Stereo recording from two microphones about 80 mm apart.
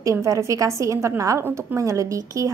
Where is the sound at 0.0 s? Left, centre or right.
Right.